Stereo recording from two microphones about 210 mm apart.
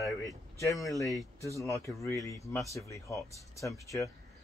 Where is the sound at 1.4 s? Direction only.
15° left (ahead or behind).